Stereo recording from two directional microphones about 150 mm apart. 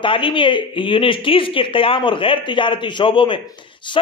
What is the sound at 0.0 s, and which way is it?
A man's voice, 35° left (ahead or behind).